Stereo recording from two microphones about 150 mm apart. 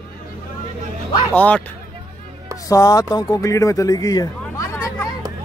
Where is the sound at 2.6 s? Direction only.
25° left (ahead or behind).